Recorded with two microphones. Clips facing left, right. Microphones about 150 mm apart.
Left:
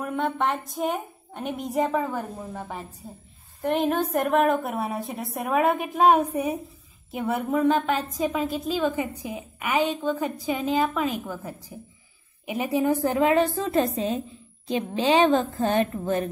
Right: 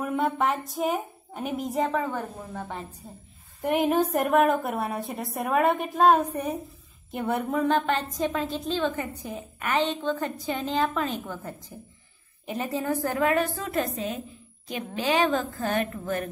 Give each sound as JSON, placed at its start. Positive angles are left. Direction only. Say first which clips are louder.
{"t": 0.0, "sound": "a woman's voice", "louder": "even", "side_deg": -5}
{"t": 3.6, "sound": "a woman's voice", "louder": "right 1 dB", "side_deg": -10}